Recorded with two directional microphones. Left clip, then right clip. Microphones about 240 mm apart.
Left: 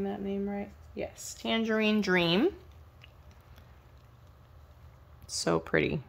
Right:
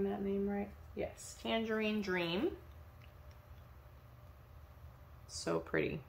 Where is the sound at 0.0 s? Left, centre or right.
Left.